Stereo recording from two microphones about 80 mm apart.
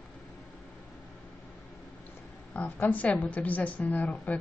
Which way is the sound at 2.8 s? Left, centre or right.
Centre.